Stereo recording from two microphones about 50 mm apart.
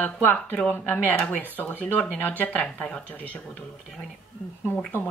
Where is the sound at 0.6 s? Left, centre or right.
Centre.